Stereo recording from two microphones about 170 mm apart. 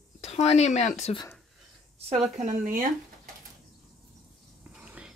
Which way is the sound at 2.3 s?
50° right (ahead or behind).